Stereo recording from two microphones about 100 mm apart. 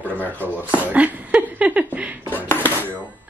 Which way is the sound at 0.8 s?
15° right (ahead or behind).